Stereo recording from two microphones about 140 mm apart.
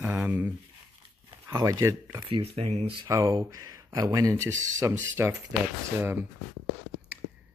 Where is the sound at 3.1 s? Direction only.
25° right (ahead or behind).